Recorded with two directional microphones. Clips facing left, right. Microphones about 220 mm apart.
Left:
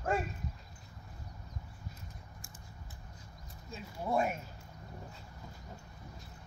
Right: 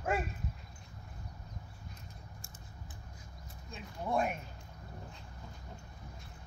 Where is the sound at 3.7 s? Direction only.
5° left (ahead or behind).